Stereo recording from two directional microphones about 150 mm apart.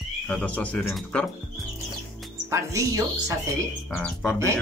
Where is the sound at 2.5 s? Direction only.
20° right (ahead or behind).